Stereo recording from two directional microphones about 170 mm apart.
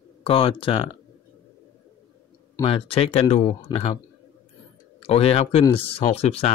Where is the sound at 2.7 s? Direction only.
35° left (ahead or behind).